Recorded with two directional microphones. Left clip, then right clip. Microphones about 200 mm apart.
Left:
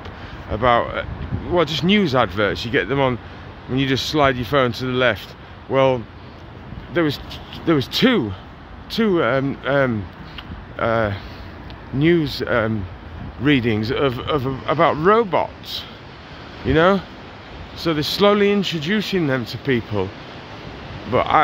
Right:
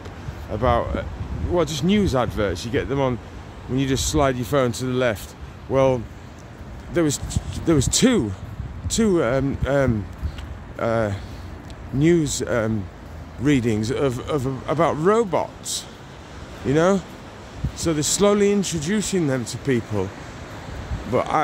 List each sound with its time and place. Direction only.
0.5 s speech: centre (ahead or behind)
21.1 s speech: 5° right (ahead or behind)